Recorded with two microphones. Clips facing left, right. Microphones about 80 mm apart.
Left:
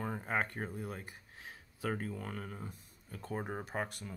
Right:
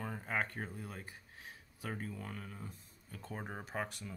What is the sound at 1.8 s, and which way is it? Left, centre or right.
Speech, left.